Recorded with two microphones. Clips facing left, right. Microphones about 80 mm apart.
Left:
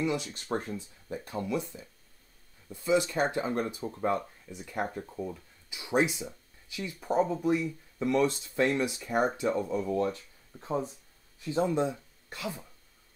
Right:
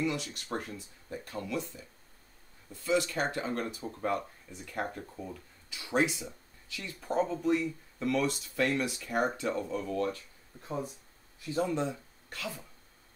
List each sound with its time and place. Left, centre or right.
0.0 s speech: left